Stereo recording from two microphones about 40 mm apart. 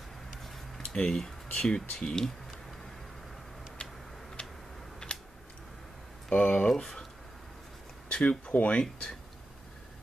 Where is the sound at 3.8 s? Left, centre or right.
Left.